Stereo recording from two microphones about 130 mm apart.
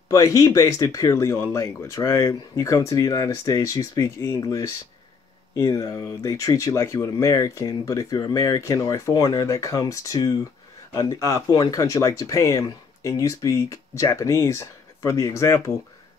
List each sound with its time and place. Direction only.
0.1 s speech: 25° left (ahead or behind)